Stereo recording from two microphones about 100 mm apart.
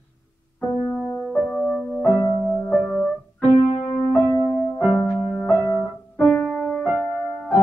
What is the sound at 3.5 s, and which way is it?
Keyboard, 90° left.